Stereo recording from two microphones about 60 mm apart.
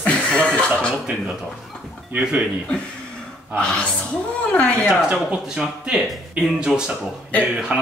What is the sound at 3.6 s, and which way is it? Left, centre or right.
Speech, centre.